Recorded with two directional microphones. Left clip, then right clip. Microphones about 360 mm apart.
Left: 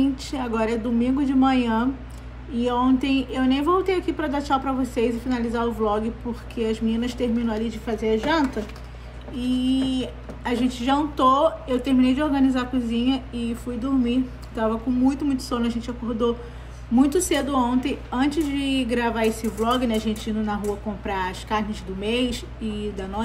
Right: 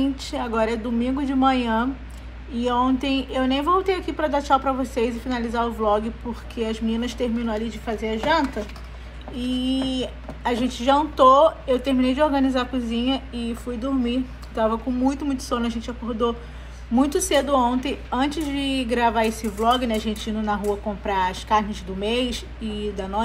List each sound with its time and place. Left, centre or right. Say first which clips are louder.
0.0 s speech: even; centre